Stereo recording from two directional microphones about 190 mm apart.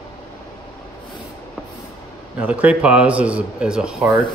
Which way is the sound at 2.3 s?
5° right (ahead or behind).